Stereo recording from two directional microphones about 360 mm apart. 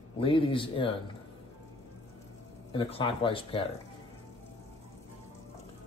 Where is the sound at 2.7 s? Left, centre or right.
Centre.